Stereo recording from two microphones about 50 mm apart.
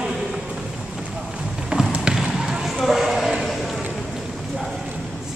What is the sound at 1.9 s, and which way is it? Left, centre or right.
Basketball bounce, right.